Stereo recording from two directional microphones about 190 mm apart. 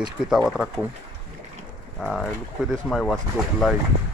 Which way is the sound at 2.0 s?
5° left (ahead or behind).